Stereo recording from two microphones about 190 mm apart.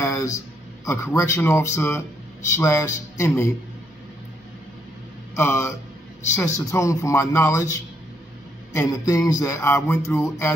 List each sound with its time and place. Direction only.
0.0 s a sound: 15° left (ahead or behind)
0.8 s music: 15° left (ahead or behind)
5.3 s speech: 15° left (ahead or behind)
6.3 s music: 15° left (ahead or behind)
8.7 s music: 15° left (ahead or behind)